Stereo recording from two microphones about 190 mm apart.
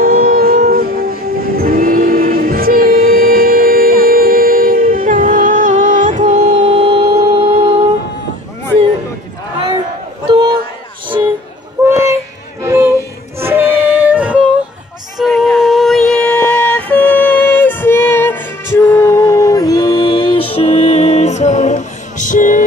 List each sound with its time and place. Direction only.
0.0 s train: 50° right (ahead or behind); by 7.8 s 30° right (ahead or behind)
11.8 s a sound: 15° right (ahead or behind)
12.6 s music: 15° right (ahead or behind)
13.4 s female singing: 10° right (ahead or behind); by 22.7 s 45° left (ahead or behind)